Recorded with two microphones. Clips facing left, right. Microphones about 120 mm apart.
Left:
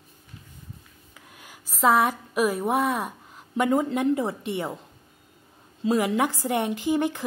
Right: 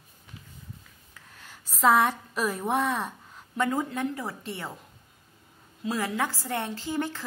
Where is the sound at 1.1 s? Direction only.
10° left (ahead or behind).